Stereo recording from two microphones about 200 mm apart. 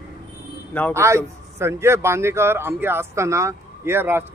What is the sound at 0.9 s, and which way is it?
A man's voice, 15° right (ahead or behind).